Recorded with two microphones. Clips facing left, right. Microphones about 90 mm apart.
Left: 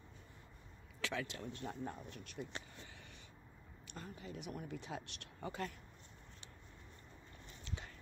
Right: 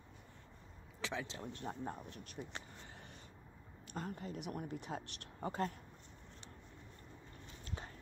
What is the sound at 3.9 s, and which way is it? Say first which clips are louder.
Speech: right 5 dB; 50° right (ahead or behind).